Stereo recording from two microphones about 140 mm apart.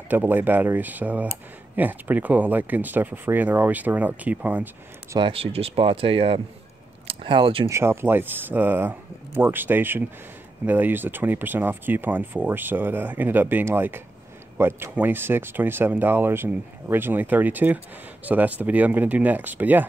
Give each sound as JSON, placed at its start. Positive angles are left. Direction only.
{"t": 0.1, "sound": "speech", "side_deg": -15}
{"t": 5.2, "sound": "speech", "side_deg": -40}
{"t": 7.6, "sound": "speech", "side_deg": -20}